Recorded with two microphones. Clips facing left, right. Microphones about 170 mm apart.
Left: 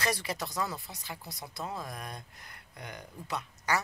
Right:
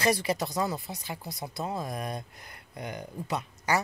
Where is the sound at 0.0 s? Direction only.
10° right (ahead or behind).